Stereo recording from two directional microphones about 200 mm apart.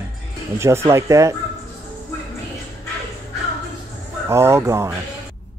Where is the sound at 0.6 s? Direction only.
15° right (ahead or behind).